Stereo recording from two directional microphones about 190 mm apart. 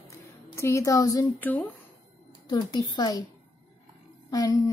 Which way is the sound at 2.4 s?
20° left (ahead or behind).